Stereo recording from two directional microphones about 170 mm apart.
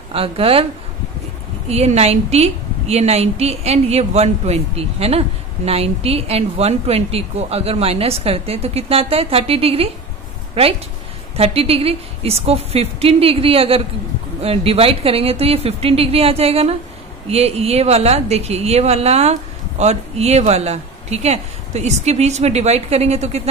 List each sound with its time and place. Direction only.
0.1 s a woman's voice: 35° right (ahead or behind)
1.7 s a woman's voice: 40° right (ahead or behind)
11.3 s a woman's voice: 35° right (ahead or behind)